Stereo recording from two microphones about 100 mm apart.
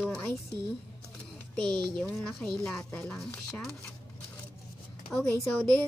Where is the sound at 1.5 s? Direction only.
5° left (ahead or behind).